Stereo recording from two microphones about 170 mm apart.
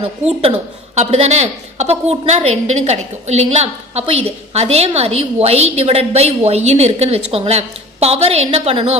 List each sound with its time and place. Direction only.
0.4 s a woman's voice: 35° right (ahead or behind)